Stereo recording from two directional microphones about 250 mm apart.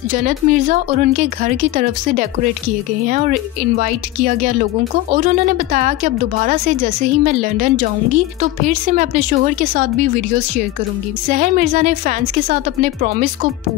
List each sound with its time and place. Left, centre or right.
0.1 s a woman's voice: right
11.2 s speech: right